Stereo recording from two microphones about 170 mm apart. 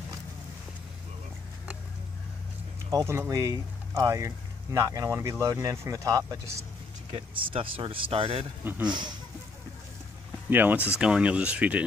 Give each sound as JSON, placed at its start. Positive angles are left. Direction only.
{"t": 2.9, "sound": "speech", "side_deg": -15}
{"t": 7.1, "sound": "speech", "side_deg": -35}
{"t": 8.6, "sound": "speech", "side_deg": -10}
{"t": 10.5, "sound": "speech", "side_deg": -10}